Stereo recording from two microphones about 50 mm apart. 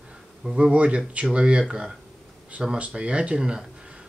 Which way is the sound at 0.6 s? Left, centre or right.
Right.